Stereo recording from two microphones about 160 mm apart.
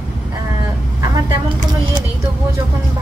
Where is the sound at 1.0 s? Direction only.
20° right (ahead or behind).